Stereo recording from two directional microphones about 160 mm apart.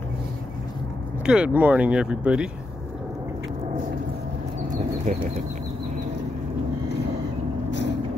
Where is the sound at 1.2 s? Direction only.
5° right (ahead or behind).